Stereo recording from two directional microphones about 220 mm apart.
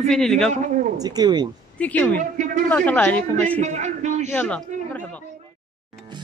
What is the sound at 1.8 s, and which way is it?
A woman's voice, 5° left (ahead or behind).